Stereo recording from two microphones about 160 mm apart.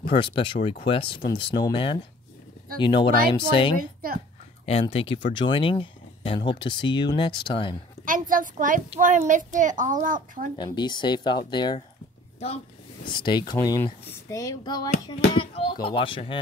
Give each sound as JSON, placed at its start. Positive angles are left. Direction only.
{"t": 0.1, "sound": "speech", "side_deg": 30}
{"t": 3.7, "sound": "a woman's voice", "side_deg": -65}
{"t": 4.6, "sound": "speech", "side_deg": 35}
{"t": 8.0, "sound": "a child's voice", "side_deg": -60}
{"t": 10.6, "sound": "speech", "side_deg": 30}
{"t": 13.0, "sound": "speech", "side_deg": 30}